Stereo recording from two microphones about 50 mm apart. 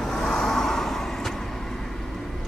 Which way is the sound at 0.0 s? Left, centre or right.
Centre.